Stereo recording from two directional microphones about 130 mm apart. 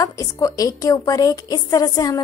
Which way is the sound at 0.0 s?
25° left (ahead or behind).